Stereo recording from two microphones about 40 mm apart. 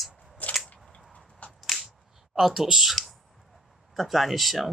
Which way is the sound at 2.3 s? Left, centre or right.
Centre.